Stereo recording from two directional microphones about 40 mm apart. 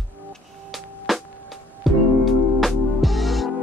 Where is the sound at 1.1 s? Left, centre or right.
Centre.